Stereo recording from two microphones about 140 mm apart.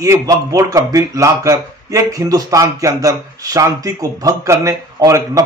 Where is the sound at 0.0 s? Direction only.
25° right (ahead or behind).